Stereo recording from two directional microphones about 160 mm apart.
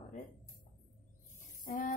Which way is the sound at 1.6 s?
55° left (ahead or behind).